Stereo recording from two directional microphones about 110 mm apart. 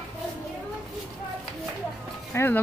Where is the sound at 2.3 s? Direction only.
20° left (ahead or behind).